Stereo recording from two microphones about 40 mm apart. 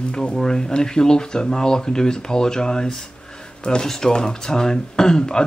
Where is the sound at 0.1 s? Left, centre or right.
Left.